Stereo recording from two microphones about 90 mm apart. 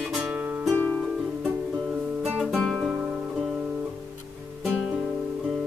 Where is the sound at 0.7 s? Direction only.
20° left (ahead or behind).